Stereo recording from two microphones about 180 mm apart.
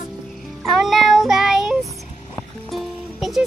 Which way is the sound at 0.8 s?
Centre (ahead or behind).